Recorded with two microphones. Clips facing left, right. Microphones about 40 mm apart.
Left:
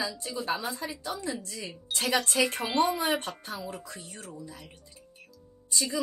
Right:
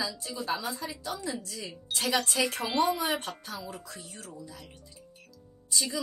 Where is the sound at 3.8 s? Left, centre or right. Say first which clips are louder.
Left 1 dB; left.